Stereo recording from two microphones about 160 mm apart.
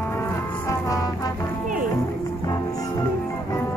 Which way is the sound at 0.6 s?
20° left (ahead or behind).